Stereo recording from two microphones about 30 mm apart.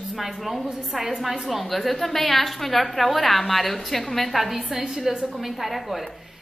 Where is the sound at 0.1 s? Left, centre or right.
Centre.